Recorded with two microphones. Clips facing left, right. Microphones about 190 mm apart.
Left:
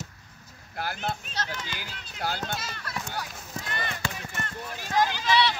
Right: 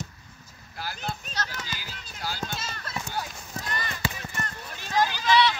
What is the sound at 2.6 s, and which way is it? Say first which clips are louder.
Run: right 1 dB; 25° right (ahead or behind).